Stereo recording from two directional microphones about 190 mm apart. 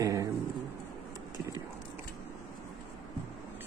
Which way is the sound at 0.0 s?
15° right (ahead or behind).